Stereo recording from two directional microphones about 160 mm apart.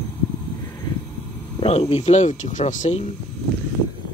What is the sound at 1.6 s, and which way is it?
Speech, 40° left (ahead or behind).